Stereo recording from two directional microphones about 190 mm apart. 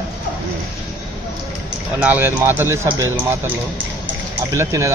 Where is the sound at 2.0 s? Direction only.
10° right (ahead or behind).